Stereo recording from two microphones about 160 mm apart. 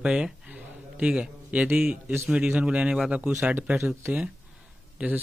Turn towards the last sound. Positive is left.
turn(degrees=-10)  # may be behind; listen again after turning